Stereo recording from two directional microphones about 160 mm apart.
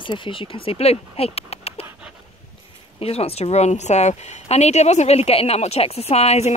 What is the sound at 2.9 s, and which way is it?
A woman's voice, 40° left (ahead or behind).